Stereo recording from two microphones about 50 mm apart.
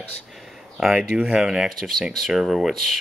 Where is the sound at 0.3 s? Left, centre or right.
Centre.